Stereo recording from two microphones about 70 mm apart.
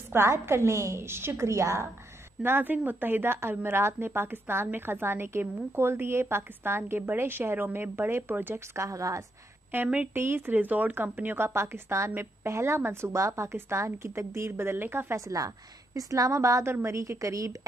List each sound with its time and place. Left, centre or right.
0.1 s a woman's voice: right
2.4 s a woman's voice: right
8.7 s a woman's voice: right
9.7 s a woman's voice: right
15.1 s a woman's voice: right